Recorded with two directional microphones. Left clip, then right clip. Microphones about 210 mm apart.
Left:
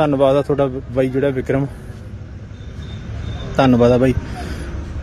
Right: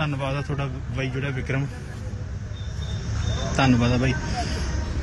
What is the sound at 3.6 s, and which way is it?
Speech, 25° left (ahead or behind).